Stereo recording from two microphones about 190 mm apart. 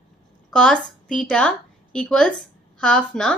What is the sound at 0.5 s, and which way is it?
A woman's voice, 5° left (ahead or behind).